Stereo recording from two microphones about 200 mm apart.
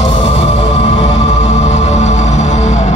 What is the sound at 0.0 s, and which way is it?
Music, 30° left (ahead or behind).